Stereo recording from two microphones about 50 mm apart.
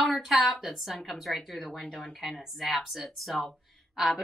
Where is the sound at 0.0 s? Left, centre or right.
Centre.